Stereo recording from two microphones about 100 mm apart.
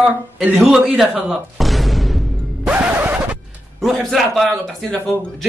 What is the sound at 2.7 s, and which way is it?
Scratch, 15° right (ahead or behind).